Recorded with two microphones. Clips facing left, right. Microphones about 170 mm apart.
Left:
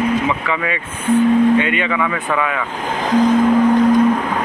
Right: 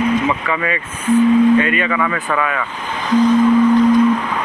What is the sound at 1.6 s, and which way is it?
Speech, 20° left (ahead or behind).